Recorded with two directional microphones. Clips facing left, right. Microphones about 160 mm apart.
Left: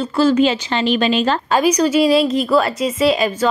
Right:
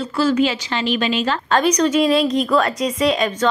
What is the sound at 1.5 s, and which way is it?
A woman's voice, 10° left (ahead or behind).